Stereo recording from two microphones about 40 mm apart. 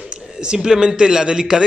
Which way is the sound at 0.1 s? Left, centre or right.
Right.